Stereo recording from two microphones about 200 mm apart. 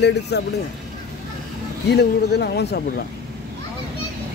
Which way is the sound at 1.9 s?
55° left (ahead or behind).